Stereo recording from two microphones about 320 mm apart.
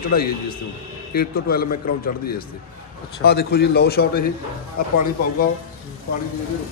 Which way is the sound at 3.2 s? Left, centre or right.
Left.